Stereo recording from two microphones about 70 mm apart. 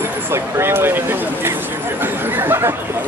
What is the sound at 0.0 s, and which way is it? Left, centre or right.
Speech, right.